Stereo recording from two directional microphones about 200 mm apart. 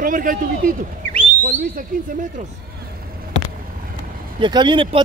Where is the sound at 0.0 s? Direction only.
45° right (ahead or behind).